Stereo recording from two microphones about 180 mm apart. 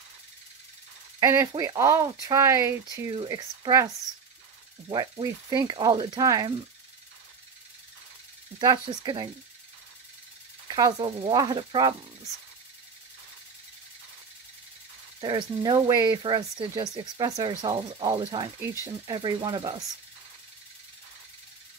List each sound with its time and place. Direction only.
1.2 s speech: 20° right (ahead or behind)
8.5 s speech: 25° right (ahead or behind)
10.7 s speech: 25° right (ahead or behind)
15.1 s speech: 25° right (ahead or behind)